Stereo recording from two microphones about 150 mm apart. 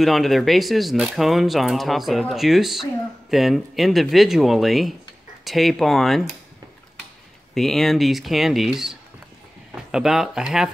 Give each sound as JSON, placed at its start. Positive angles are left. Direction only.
{"t": 0.0, "sound": "speech", "side_deg": 0}
{"t": 7.5, "sound": "speech", "side_deg": 0}